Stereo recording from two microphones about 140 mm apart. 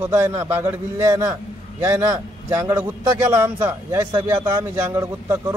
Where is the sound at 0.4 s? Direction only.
15° right (ahead or behind).